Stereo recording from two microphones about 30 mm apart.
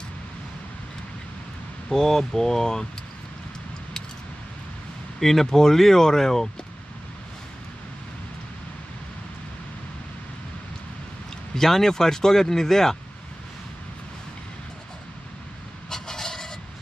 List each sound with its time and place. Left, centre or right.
2.0 s speech: centre
5.2 s speech: centre
11.5 s speech: centre
15.9 s filing: centre